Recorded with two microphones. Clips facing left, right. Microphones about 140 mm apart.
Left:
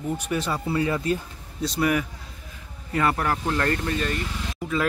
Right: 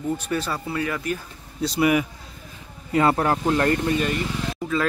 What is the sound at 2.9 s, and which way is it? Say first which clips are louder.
Speech: right 4 dB; 25° right (ahead or behind).